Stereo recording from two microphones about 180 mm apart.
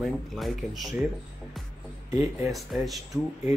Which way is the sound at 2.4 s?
Centre (ahead or behind).